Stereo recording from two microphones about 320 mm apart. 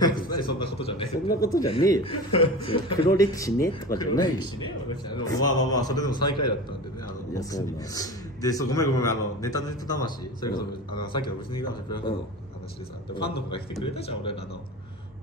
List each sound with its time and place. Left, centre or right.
0.0 s a sound: centre
0.6 s a man's voice: centre
11.5 s a man's voice: left
13.9 s a man's voice: centre